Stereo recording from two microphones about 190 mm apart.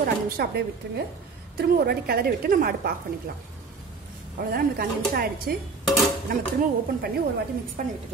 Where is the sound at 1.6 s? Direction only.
55° right (ahead or behind).